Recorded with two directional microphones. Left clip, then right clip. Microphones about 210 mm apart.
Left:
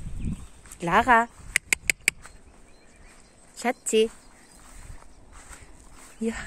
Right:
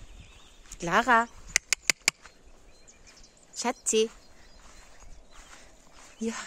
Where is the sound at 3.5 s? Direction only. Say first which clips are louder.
Left 3 dB; 15° right (ahead or behind).